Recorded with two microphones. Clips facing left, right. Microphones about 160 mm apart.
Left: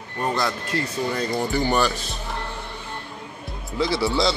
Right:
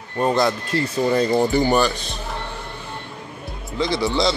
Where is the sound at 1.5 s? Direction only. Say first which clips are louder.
Right 4 dB; 15° right (ahead or behind).